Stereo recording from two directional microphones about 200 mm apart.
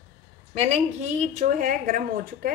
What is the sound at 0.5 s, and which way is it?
A woman's voice, 30° right (ahead or behind).